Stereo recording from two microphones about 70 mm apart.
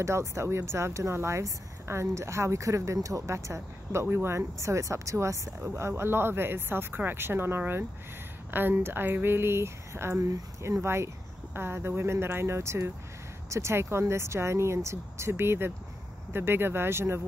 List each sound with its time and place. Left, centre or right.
0.0 s speech: right